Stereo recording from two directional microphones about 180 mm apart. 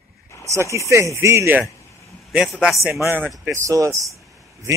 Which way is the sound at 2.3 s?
Centre (ahead or behind).